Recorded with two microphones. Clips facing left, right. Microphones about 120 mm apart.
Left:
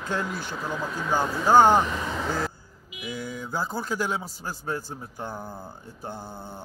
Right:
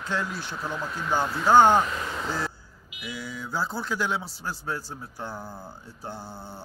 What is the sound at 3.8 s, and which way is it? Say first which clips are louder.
Speech: even; 45° left (ahead or behind).